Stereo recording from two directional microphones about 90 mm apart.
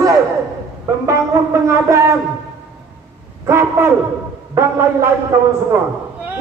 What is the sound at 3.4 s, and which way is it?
Music, 30° right (ahead or behind).